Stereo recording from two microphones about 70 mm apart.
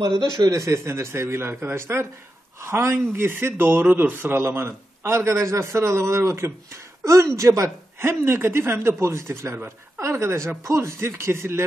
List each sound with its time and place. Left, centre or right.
0.4 s speech: right